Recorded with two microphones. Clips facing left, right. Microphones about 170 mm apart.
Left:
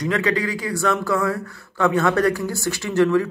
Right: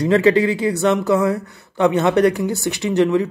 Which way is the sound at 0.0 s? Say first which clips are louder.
Right 8 dB; 30° right (ahead or behind).